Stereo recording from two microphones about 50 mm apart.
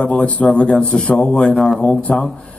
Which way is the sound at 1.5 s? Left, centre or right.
Centre.